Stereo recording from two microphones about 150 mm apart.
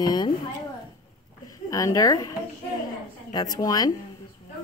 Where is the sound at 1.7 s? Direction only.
25° left (ahead or behind).